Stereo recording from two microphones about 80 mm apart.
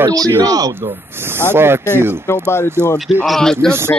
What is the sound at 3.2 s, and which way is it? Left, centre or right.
Speech, centre.